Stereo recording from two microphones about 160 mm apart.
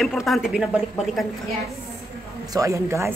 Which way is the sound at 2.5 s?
20° right (ahead or behind).